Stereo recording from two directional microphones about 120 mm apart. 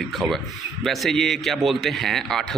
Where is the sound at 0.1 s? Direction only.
Centre (ahead or behind).